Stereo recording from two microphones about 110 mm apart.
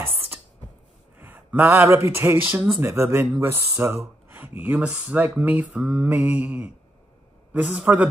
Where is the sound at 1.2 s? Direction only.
15° right (ahead or behind).